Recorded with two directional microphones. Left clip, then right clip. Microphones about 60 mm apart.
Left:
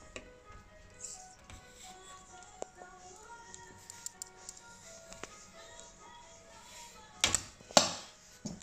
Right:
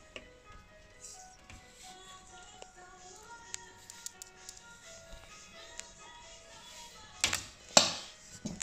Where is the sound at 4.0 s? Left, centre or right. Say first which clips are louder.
Left 1 dB; left.